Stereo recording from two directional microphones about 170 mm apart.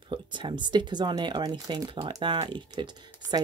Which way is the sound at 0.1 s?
30° right (ahead or behind).